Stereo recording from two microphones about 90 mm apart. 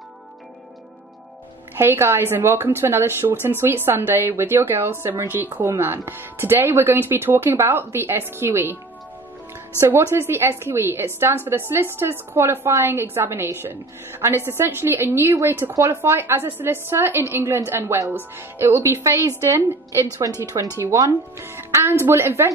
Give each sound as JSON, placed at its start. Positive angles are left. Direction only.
{"t": 1.8, "sound": "speech", "side_deg": -25}
{"t": 9.8, "sound": "a woman's voice", "side_deg": -30}